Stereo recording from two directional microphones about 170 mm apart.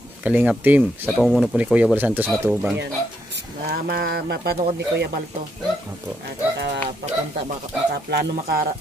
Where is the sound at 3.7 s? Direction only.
70° right (ahead or behind).